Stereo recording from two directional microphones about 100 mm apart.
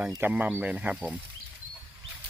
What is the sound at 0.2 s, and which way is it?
Speech, 20° right (ahead or behind).